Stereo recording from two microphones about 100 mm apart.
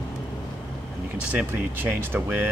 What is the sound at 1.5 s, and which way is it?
Speech, 20° right (ahead or behind).